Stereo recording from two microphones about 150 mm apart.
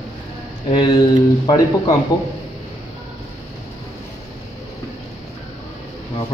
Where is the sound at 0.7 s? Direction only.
35° left (ahead or behind).